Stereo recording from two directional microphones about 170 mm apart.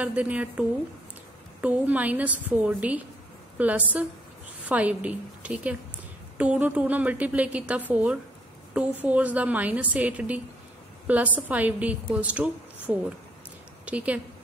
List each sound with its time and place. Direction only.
0.0 s a woman's voice: 10° right (ahead or behind)